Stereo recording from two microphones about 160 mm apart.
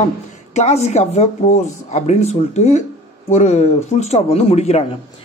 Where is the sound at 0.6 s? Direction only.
45° left (ahead or behind).